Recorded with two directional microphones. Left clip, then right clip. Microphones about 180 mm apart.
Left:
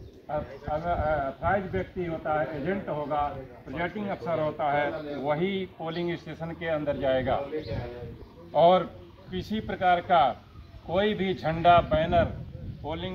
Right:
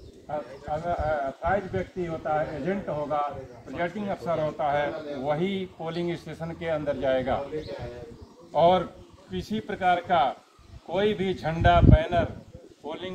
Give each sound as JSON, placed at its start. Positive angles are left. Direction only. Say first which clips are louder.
{"t": 0.8, "sound": "a man's voice", "louder": "even", "side_deg": -60}
{"t": 7.5, "sound": "a man's voice", "louder": "even", "side_deg": 40}
{"t": 8.5, "sound": "speech", "louder": "left 1 dB", "side_deg": -30}